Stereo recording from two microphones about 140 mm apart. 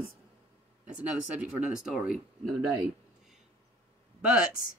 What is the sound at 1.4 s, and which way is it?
Speech, 5° right (ahead or behind).